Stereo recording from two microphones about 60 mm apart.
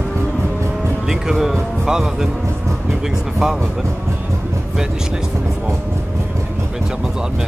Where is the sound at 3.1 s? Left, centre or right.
Centre.